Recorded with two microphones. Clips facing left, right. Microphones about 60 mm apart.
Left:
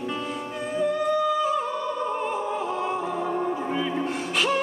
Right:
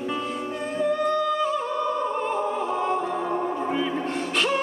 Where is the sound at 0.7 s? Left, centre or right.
Centre.